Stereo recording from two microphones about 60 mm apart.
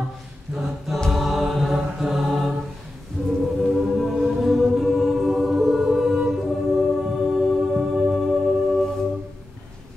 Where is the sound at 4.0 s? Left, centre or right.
Centre.